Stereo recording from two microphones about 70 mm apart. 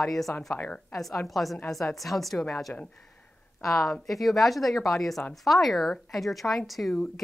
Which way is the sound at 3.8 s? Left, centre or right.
Centre.